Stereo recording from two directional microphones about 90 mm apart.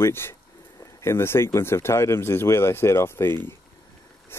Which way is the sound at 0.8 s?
30° left (ahead or behind).